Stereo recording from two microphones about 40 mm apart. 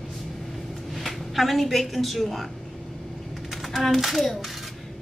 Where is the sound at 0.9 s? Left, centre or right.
Centre.